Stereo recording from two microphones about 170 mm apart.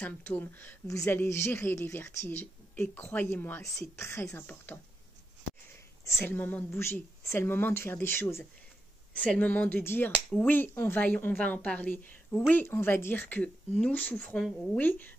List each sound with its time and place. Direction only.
0.0 s a woman's voice: 10° left (ahead or behind)
6.2 s a woman's voice: 10° left (ahead or behind)